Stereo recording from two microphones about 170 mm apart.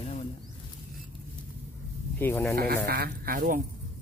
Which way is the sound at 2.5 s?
60° right (ahead or behind).